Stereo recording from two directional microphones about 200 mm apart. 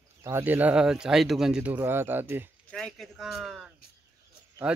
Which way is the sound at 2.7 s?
Centre (ahead or behind).